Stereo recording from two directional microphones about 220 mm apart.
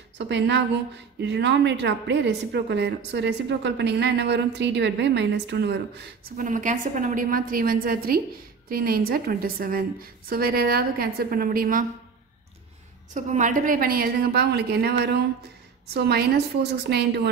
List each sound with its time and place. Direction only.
0.3 s a woman's voice: 50° right (ahead or behind)
6.3 s a woman's voice: 35° right (ahead or behind)
13.1 s a woman's voice: 35° right (ahead or behind)